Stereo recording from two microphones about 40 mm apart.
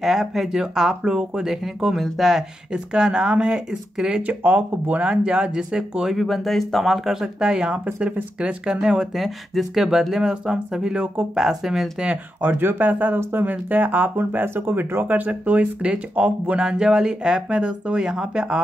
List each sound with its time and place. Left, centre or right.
0.0 s speech: centre
2.7 s speech: centre
4.3 s speech: right
5.0 s speech: right
6.1 s speech: centre
7.2 s speech: centre
9.1 s speech: centre; by 11.2 s right
11.3 s speech: centre
12.5 s speech: right
12.8 s speech: right
13.2 s speech: right
14.4 s speech: right
15.0 s speech: right
16.5 s speech: centre